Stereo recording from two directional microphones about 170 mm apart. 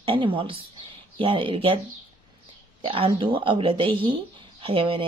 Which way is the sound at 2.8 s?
35° right (ahead or behind).